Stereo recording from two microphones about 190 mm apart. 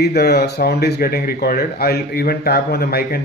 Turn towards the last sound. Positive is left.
turn(degrees=55)  # may be behind; listen again after turning